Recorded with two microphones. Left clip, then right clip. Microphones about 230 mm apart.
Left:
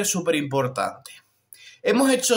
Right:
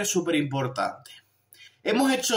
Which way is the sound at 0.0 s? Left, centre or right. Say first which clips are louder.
Left 2 dB; left.